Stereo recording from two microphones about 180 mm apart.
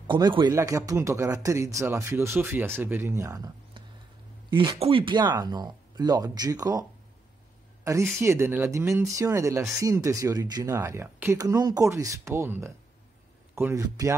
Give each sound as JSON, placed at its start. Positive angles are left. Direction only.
{"t": 0.0, "sound": "speech", "side_deg": -25}
{"t": 8.8, "sound": "speech", "side_deg": -5}
{"t": 9.1, "sound": "speech", "side_deg": -15}